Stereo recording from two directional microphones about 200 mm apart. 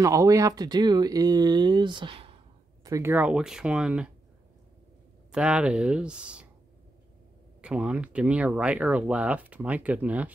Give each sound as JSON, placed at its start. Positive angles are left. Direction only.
{"t": 0.0, "sound": "speech", "side_deg": -15}
{"t": 2.8, "sound": "speech", "side_deg": -15}
{"t": 5.3, "sound": "speech", "side_deg": -5}
{"t": 7.6, "sound": "speech", "side_deg": -5}